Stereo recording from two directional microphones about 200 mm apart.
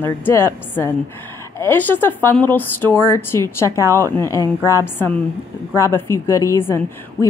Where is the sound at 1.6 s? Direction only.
10° left (ahead or behind).